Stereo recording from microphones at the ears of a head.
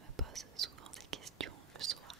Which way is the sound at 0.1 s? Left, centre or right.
Right.